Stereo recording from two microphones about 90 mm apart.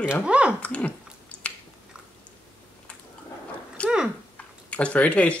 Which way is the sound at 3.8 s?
15° left (ahead or behind).